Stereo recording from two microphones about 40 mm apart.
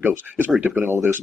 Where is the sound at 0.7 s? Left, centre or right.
Right.